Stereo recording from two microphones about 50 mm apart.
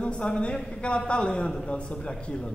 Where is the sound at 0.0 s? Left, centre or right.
Left.